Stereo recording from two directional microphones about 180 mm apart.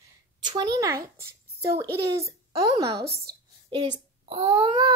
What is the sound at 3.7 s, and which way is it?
A child's voice, 30° right (ahead or behind).